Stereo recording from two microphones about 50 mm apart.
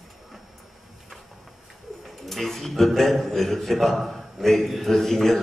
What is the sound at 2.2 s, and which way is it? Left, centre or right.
A woman's voice, centre.